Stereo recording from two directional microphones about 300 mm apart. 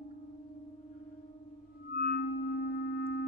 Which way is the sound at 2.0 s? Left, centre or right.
Left.